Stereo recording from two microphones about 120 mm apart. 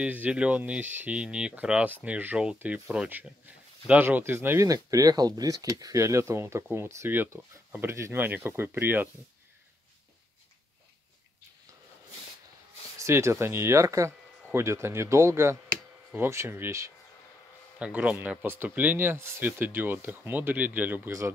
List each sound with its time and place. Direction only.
0.0 s speech: 10° right (ahead or behind)
13.0 s speech: 25° right (ahead or behind)
17.7 s speech: 10° right (ahead or behind)